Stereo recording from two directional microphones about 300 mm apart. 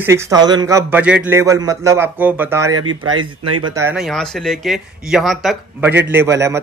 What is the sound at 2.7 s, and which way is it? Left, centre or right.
Speech, right.